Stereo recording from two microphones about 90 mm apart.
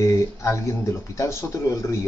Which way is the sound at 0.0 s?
35° left (ahead or behind).